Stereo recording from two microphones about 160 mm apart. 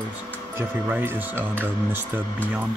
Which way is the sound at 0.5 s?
15° right (ahead or behind).